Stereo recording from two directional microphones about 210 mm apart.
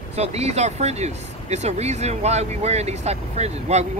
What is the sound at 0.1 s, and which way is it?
Speech, 30° right (ahead or behind).